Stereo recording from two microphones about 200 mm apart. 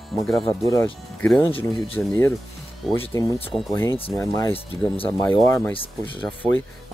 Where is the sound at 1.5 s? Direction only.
25° left (ahead or behind).